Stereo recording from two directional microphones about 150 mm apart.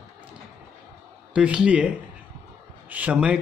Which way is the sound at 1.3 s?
5° right (ahead or behind).